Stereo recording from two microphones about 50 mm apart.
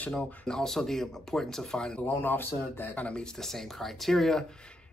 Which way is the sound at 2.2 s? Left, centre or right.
Left.